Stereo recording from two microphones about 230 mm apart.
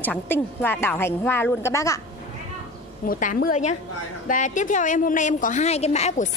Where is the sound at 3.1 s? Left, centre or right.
Left.